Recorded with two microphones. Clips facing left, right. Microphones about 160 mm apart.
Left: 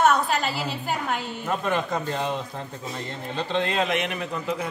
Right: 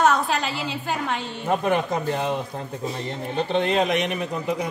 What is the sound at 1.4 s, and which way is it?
Speech, 20° right (ahead or behind).